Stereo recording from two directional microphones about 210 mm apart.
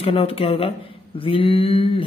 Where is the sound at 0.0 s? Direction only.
25° left (ahead or behind).